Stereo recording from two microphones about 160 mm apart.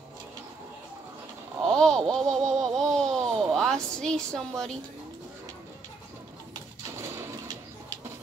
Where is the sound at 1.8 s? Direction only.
5° left (ahead or behind).